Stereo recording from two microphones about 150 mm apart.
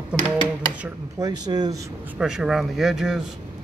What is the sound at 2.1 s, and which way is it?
Speech, 5° right (ahead or behind).